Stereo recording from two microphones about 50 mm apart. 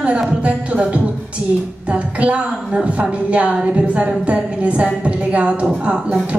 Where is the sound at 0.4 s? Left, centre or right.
Right.